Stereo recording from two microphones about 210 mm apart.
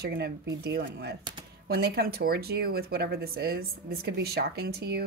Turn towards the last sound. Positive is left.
turn(degrees=-50)  # may be behind; listen again after turning